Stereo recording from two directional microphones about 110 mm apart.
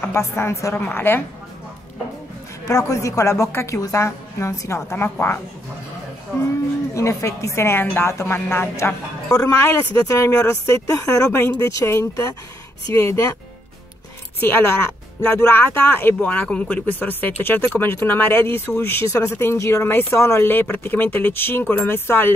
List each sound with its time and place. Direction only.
0.0 s speech: 25° left (ahead or behind)
2.7 s speech: 30° left (ahead or behind)
7.0 s speech: 25° left (ahead or behind)
9.3 s speech: 30° left (ahead or behind)
14.4 s speech: 20° left (ahead or behind)